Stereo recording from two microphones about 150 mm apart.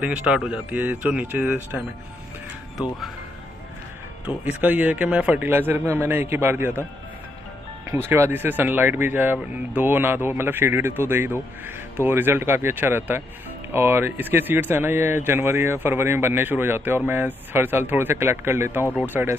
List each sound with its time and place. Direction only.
0.0 s speech: 5° right (ahead or behind)
4.3 s speech: 10° right (ahead or behind)
8.1 s speech: 15° right (ahead or behind)